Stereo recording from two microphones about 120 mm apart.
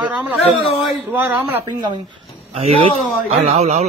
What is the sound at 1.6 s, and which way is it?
Speech, 40° right (ahead or behind).